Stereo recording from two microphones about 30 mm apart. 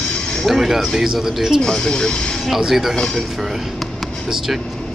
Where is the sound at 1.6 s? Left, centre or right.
Left.